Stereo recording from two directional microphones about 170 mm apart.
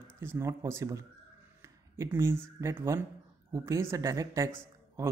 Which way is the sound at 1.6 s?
15° right (ahead or behind).